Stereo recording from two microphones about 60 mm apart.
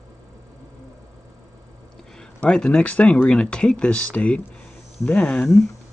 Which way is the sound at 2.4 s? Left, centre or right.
Centre.